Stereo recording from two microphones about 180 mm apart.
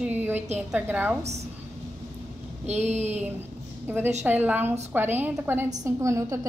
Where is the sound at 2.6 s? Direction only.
40° right (ahead or behind).